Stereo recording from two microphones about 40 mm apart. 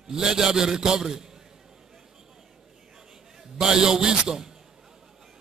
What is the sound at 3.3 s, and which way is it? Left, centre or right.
A man's voice, centre.